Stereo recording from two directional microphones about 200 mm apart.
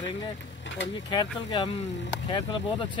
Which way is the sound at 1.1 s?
20° left (ahead or behind).